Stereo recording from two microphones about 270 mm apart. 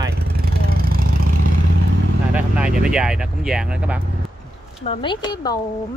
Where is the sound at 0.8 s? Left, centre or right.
Right.